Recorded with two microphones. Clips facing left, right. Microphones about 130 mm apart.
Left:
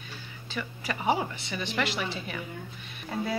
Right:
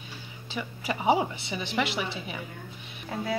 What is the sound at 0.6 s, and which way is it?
Speech, 15° right (ahead or behind).